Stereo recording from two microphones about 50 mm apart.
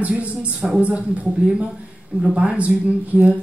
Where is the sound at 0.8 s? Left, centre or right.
Right.